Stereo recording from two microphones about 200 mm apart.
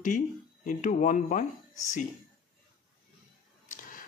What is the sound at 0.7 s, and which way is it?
Speech, 40° left (ahead or behind).